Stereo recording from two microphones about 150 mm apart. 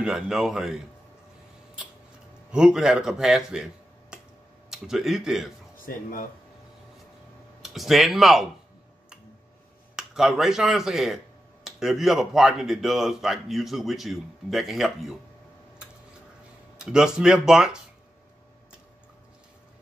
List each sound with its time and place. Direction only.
0.0 s speech: 5° right (ahead or behind)
2.5 s speech: 5° right (ahead or behind)
4.6 s speech: 5° right (ahead or behind)
5.9 s speech: 65° left (ahead or behind)
7.6 s speech: centre (ahead or behind)
9.9 s speech: 5° right (ahead or behind)
16.7 s speech: 5° right (ahead or behind)